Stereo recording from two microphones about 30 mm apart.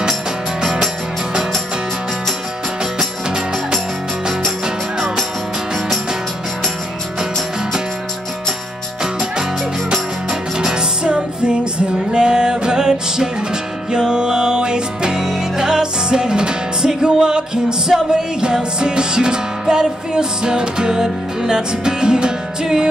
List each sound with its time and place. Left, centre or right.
10.7 s music: right